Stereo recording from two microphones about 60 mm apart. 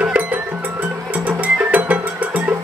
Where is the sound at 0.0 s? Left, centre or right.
Right.